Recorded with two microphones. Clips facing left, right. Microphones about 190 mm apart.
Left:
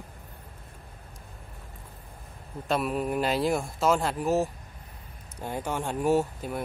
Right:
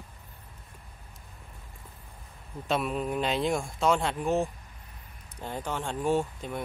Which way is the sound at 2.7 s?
5° left (ahead or behind).